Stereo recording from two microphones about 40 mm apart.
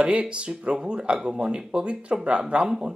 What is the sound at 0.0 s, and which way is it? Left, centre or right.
Speech, right.